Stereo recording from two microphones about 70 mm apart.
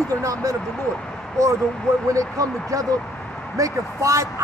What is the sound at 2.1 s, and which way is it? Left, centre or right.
A man's voice, right.